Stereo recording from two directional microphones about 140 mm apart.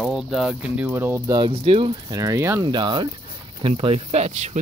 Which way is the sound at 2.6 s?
35° right (ahead or behind).